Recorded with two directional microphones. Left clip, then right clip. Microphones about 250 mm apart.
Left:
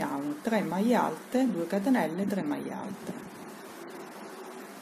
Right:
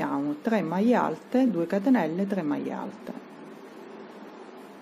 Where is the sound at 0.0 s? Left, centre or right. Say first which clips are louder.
Right 4 dB; centre.